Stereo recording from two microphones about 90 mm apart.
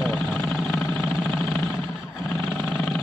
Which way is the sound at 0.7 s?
15° left (ahead or behind).